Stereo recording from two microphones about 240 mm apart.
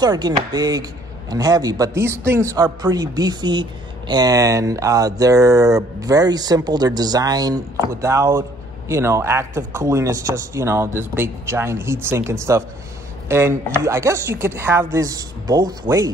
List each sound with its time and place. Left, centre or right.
0.0 s speech: centre